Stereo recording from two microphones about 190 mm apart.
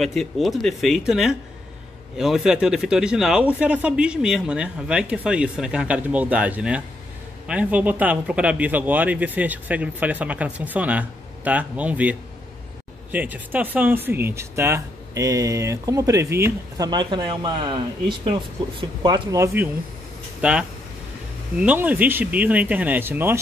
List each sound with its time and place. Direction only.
0.0 s speech: centre (ahead or behind)